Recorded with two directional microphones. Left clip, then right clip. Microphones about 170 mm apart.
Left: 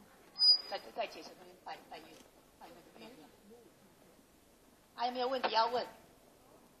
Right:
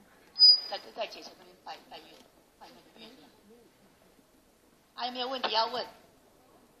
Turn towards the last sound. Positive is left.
turn(degrees=20)  # may be behind; listen again after turning